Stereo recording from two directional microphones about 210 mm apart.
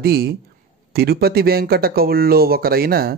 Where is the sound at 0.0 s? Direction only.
50° right (ahead or behind).